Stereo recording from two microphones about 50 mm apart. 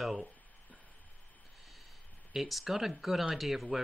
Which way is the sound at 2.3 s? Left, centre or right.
Centre.